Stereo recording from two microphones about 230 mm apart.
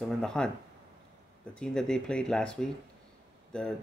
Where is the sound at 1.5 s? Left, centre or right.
Centre.